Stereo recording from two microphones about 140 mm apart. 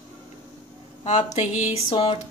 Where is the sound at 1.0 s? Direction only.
55° left (ahead or behind).